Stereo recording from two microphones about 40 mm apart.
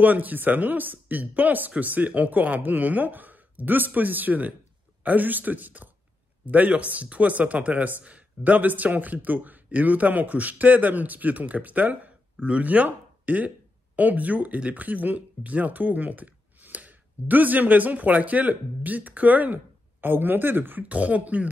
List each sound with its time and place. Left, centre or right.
0.0 s a man's voice: right
20.9 s speech: right